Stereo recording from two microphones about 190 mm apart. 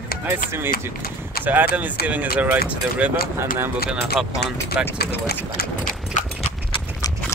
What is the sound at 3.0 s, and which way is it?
Speech, 5° right (ahead or behind).